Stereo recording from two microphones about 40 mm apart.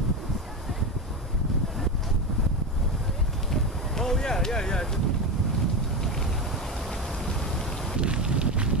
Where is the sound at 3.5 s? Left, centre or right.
Centre.